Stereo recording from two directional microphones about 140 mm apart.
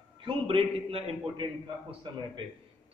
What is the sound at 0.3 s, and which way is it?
A man's voice, 40° right (ahead or behind).